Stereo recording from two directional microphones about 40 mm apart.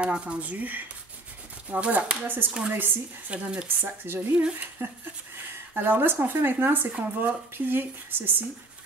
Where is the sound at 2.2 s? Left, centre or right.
Right.